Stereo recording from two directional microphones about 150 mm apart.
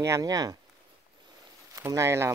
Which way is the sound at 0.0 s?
20° right (ahead or behind).